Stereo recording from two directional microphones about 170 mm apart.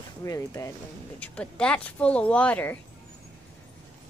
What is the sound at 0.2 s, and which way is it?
Speech, 20° left (ahead or behind).